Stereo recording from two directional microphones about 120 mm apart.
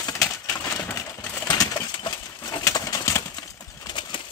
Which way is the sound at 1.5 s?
40° left (ahead or behind).